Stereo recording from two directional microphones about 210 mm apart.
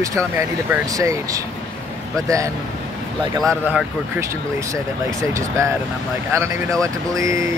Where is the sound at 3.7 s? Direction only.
15° right (ahead or behind).